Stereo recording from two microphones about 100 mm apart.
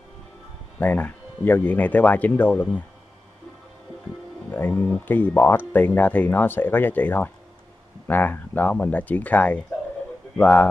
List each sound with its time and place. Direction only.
0.7 s speech: 15° left (ahead or behind)
4.5 s speech: 20° left (ahead or behind)